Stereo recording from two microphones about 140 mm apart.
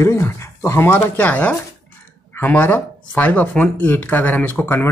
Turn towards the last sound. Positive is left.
turn(degrees=15)  # may be behind; listen again after turning